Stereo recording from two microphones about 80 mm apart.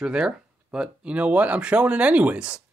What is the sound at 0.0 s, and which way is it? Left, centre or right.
Speech, centre.